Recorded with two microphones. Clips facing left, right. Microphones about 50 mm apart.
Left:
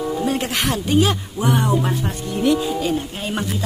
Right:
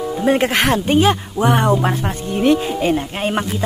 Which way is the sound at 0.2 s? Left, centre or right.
Right.